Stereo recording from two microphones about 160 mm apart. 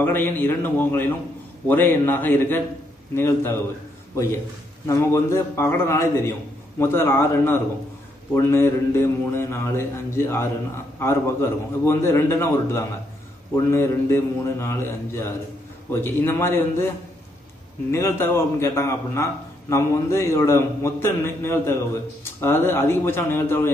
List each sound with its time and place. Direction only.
0.0 s a man's voice: 10° left (ahead or behind)
4.8 s a man's voice: 20° left (ahead or behind)
17.9 s a man's voice: 15° left (ahead or behind)